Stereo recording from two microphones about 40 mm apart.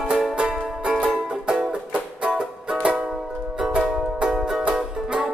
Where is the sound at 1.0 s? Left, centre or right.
Right.